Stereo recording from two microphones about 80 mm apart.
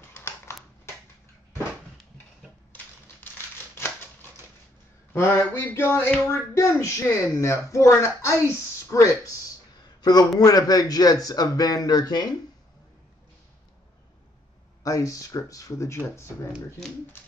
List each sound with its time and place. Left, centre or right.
0.1 s a sound: left
3.7 s scissors: left
5.1 s a sound: left
8.8 s speech: left
10.4 s a man's voice: left
14.8 s a man's voice: left